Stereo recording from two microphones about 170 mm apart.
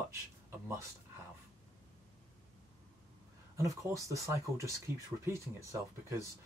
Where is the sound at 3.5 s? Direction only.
20° right (ahead or behind).